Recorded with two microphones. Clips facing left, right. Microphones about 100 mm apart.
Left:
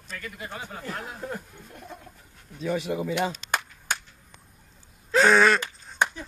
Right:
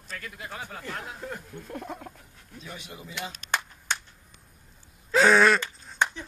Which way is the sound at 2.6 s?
90° left.